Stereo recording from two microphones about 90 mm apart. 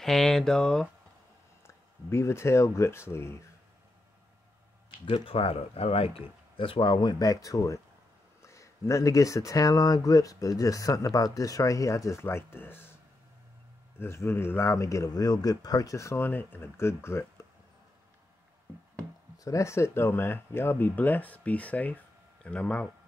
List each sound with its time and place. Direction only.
0.0 s speech: 5° left (ahead or behind)
2.0 s speech: 30° left (ahead or behind)
5.0 s speech: 90° left; by 17.5 s 30° left (ahead or behind)
19.3 s speech: 40° left (ahead or behind); by 22.8 s 15° left (ahead or behind)